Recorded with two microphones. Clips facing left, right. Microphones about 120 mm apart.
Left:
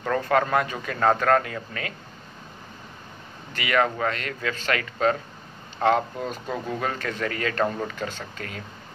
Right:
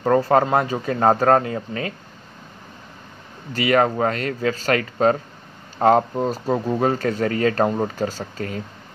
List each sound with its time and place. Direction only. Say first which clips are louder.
0.0 s speech: right 6 dB; 35° right (ahead or behind)
3.5 s speech: right 6 dB; 35° right (ahead or behind)